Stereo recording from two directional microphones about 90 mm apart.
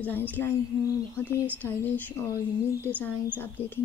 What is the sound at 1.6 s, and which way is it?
Speech, 20° left (ahead or behind).